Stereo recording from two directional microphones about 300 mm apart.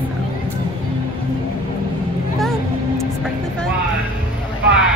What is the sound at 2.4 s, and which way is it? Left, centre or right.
Music, centre.